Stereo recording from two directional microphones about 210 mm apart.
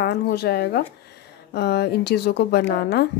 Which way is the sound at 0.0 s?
50° left (ahead or behind).